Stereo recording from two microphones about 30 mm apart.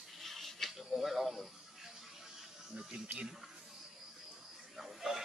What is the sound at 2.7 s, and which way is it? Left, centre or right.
Music, right.